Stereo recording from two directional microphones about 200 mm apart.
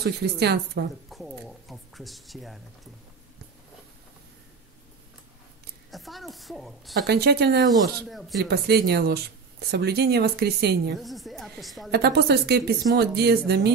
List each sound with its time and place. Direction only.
0.0 s speech: 55° right (ahead or behind)
1.1 s a sound: centre (ahead or behind)
5.9 s a woman's voice: centre (ahead or behind)
7.1 s speech: 55° right (ahead or behind)
8.1 s a woman's voice: centre (ahead or behind)
8.5 s speech: 55° right (ahead or behind)
11.0 s a woman's voice: centre (ahead or behind)
11.9 s speech: 55° right (ahead or behind)